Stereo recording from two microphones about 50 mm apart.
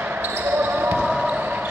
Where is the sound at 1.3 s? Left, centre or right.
Right.